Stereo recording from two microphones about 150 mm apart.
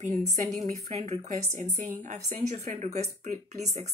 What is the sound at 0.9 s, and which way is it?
A woman's voice, 45° right (ahead or behind).